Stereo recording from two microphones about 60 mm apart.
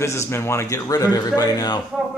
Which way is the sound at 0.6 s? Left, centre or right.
Left.